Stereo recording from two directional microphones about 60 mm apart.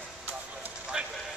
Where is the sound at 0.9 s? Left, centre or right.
Centre.